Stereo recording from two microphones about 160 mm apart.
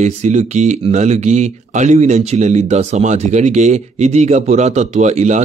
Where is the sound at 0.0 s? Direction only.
45° right (ahead or behind).